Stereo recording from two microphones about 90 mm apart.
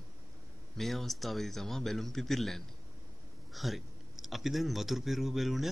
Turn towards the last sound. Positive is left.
turn(degrees=0)  # may be behind; listen again after turning